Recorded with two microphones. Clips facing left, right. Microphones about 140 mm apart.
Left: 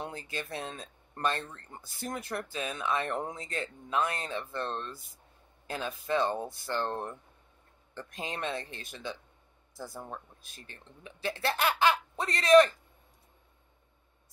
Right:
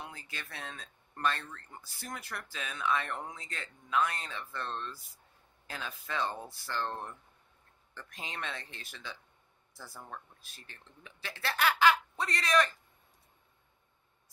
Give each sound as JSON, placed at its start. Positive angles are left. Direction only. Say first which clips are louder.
{"t": 0.0, "sound": "speech", "louder": "left 7 dB", "side_deg": 25}
{"t": 8.3, "sound": "speech", "louder": "left 6 dB", "side_deg": 20}